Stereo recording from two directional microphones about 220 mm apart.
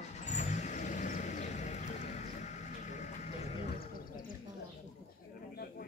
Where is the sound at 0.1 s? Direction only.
30° left (ahead or behind).